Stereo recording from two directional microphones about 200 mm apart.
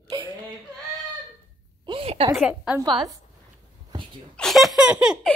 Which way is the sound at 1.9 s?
25° right (ahead or behind).